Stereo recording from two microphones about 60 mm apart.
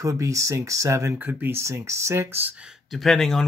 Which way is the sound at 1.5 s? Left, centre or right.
Right.